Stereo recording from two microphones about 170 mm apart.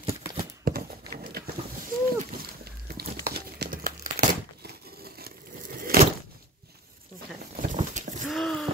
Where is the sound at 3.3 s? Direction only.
65° right (ahead or behind).